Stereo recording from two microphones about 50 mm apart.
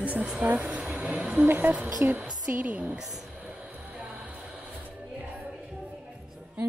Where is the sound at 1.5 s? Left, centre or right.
Right.